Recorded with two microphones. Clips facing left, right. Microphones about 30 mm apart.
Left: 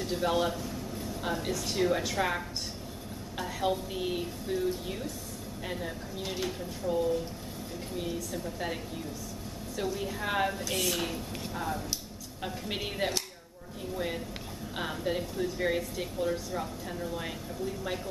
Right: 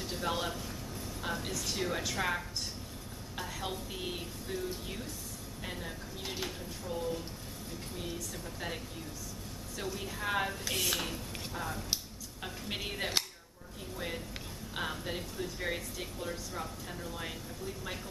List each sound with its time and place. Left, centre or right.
0.0 s speech: centre